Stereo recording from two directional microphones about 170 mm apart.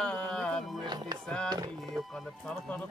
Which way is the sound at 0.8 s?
25° right (ahead or behind).